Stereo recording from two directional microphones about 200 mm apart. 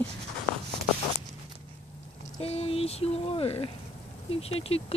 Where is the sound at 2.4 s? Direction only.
30° left (ahead or behind).